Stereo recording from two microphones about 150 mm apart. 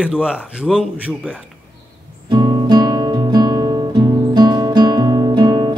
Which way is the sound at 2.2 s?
30° right (ahead or behind).